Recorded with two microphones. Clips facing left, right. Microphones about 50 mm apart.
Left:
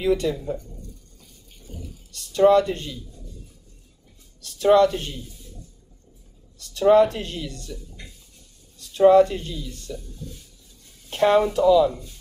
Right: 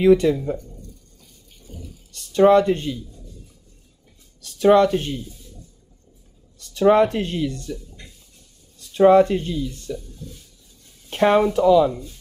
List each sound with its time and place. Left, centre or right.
0.0 s speech: right
2.3 s speech: right
4.5 s speech: right
6.7 s speech: right
8.9 s speech: right
11.1 s speech: right